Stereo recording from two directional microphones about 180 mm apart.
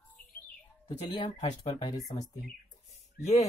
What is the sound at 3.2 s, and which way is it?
Speech, 40° left (ahead or behind).